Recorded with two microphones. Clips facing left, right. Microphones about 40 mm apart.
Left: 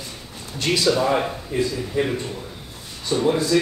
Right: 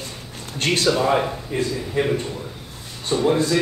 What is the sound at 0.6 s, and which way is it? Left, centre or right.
Speech, right.